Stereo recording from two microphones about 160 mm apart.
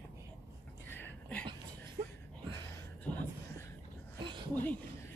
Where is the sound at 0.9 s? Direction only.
10° left (ahead or behind).